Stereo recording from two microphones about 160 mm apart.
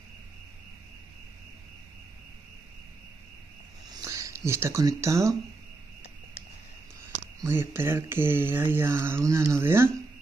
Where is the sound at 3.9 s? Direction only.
20° right (ahead or behind).